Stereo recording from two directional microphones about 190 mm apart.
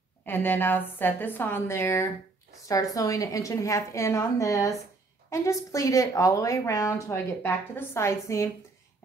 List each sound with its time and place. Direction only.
0.2 s speech: 10° left (ahead or behind)